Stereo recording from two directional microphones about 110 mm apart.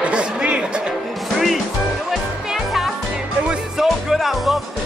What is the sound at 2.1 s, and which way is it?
Music, centre (ahead or behind).